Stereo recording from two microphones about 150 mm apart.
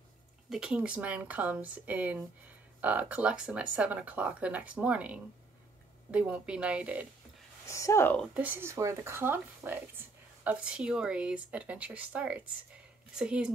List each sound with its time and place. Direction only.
0.5 s speech: 5° right (ahead or behind)
7.6 s speech: 20° left (ahead or behind)
8.4 s speech: 15° right (ahead or behind)